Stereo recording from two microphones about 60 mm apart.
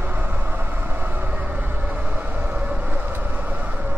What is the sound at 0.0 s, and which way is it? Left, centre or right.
Vehicle, right.